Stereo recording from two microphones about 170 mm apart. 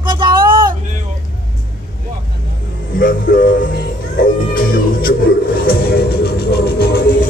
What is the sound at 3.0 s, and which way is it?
Music, 55° left (ahead or behind).